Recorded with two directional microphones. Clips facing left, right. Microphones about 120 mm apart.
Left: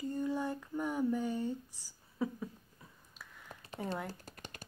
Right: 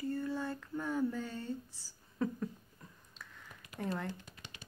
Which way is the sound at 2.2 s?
5° left (ahead or behind).